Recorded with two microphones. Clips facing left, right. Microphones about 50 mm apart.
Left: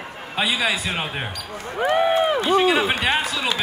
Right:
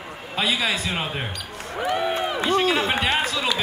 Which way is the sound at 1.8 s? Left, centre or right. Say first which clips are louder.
Left 5 dB; left.